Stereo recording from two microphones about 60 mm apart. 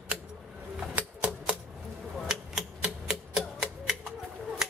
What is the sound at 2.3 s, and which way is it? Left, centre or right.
Typewriter, centre.